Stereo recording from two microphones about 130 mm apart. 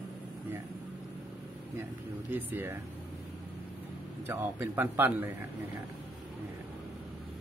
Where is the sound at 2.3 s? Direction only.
15° right (ahead or behind).